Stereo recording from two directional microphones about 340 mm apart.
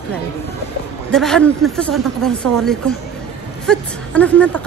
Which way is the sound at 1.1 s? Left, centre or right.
Centre.